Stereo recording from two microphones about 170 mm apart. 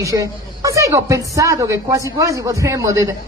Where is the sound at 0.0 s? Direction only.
20° right (ahead or behind).